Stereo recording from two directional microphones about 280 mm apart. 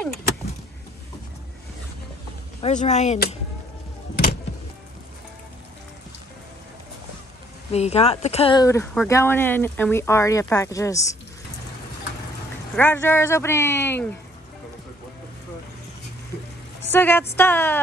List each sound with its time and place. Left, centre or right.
2.6 s speech: left
7.7 s speech: left
12.7 s speech: centre
16.9 s speech: centre